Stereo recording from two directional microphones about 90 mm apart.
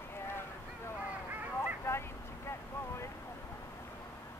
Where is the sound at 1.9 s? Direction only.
30° left (ahead or behind).